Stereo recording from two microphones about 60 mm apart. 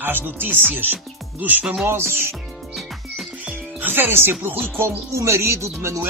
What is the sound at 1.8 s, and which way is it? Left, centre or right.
Speech, right.